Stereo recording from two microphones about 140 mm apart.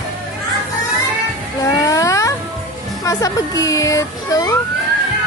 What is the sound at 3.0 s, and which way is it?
Speech, 25° left (ahead or behind).